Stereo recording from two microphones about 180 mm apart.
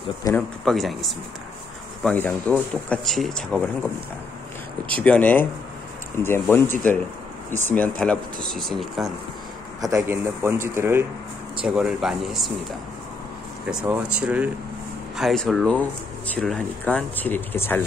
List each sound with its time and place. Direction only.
0.2 s speech: 20° left (ahead or behind)
0.7 s speech: centre (ahead or behind)
5.0 s speech: 10° left (ahead or behind)
9.8 s a man's voice: 15° right (ahead or behind); by 12.5 s centre (ahead or behind)
13.7 s speech: 5° right (ahead or behind); by 17.8 s 10° left (ahead or behind)